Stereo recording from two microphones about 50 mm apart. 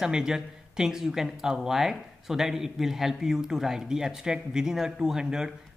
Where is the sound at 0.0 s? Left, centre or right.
Centre.